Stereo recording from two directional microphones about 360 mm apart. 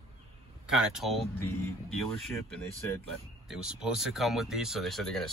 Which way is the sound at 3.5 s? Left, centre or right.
Centre.